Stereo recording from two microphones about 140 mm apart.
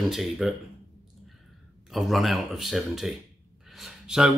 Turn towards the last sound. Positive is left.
turn(degrees=-5)  # may be behind; listen again after turning